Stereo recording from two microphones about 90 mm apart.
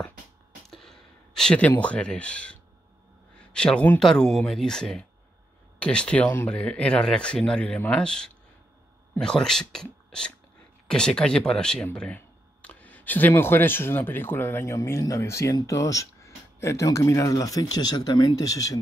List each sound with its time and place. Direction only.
0.7 s a sound: 5° left (ahead or behind)
1.8 s speech: 15° left (ahead or behind)
4.0 s speech: 5° left (ahead or behind)
10.9 s speech: 10° left (ahead or behind)
12.6 s a sound: 15° left (ahead or behind)
13.3 s speech: 25° left (ahead or behind); by 18.8 s 40° left (ahead or behind)